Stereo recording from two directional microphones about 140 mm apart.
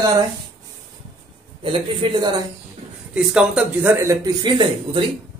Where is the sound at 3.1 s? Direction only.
5° right (ahead or behind).